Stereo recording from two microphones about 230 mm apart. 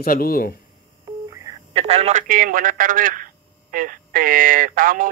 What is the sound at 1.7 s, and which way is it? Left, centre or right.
Speech, right.